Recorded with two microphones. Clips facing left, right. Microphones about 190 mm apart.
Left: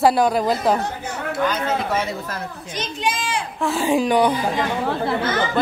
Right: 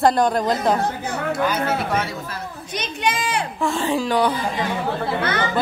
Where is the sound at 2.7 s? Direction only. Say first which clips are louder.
Right 1 dB; 65° right (ahead or behind).